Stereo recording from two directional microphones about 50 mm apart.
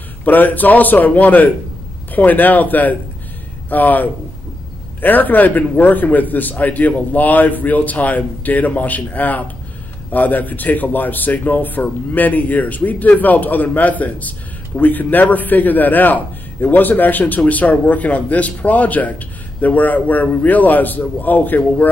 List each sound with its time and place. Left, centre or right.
0.2 s a man's voice: left